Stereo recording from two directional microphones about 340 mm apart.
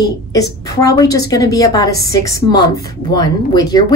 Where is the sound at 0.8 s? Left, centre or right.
Centre.